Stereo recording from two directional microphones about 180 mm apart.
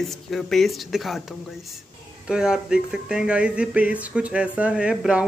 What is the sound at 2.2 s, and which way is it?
Speech, 5° right (ahead or behind).